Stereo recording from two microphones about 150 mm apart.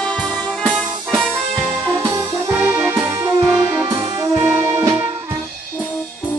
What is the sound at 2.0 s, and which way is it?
Music, 15° right (ahead or behind).